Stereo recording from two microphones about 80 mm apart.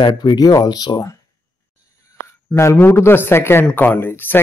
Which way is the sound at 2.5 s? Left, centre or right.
Left.